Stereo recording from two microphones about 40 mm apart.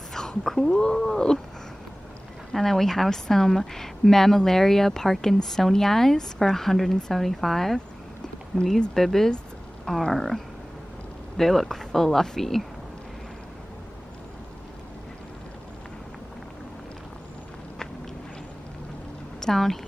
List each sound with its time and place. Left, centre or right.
0.1 s whispering: centre
0.5 s speech: centre
0.9 s speech: centre
2.5 s speech: centre
8.9 s speech: centre
19.4 s speech: centre